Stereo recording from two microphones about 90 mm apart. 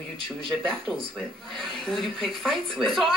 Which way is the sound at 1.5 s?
5° left (ahead or behind).